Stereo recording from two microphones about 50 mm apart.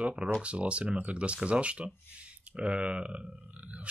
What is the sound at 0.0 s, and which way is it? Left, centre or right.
Speech, centre.